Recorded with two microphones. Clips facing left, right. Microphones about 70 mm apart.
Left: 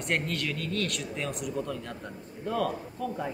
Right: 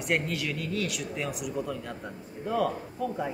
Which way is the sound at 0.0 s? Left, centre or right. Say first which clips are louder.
Right 1 dB; centre.